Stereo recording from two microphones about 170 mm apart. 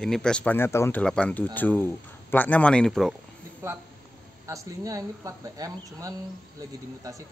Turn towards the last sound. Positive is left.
turn(degrees=-20)  # may be behind; listen again after turning